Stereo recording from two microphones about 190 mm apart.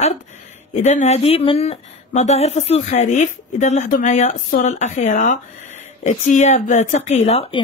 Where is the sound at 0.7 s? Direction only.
40° left (ahead or behind).